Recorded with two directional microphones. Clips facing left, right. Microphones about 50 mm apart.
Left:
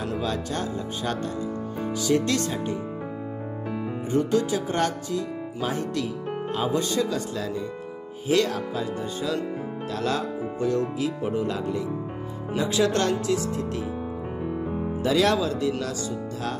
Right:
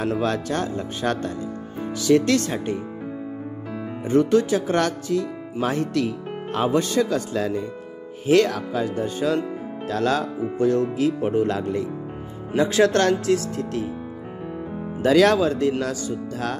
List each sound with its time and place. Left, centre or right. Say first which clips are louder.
0.1 s speech: right 5 dB; right
4.1 s speech: right 5 dB; right
8.3 s speech: right 5 dB; right
9.8 s speech: right 5 dB; right
10.7 s speech: right 3 dB; right
15.0 s speech: right 6 dB; right